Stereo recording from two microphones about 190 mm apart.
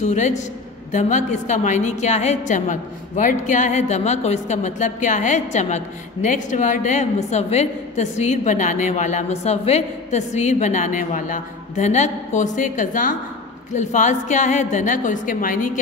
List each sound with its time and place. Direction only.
0.0 s a woman's voice: 40° left (ahead or behind)